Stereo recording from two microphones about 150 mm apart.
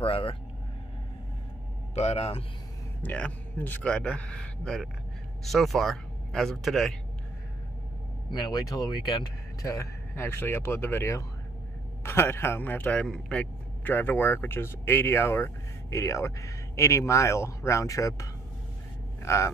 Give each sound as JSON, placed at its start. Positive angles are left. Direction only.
{"t": 0.0, "sound": "speech", "side_deg": 35}
{"t": 2.0, "sound": "a man's voice", "side_deg": 45}
{"t": 3.0, "sound": "speech", "side_deg": 10}
{"t": 8.3, "sound": "speech", "side_deg": 25}